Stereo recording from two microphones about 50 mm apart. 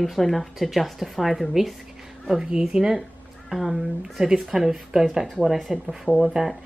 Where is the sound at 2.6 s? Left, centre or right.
Centre.